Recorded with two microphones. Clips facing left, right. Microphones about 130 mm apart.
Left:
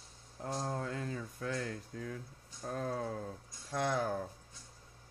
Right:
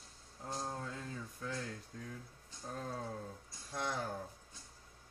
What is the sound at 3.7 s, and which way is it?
Speech, 85° left.